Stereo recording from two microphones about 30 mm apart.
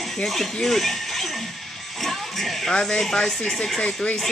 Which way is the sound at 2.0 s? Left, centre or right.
Centre.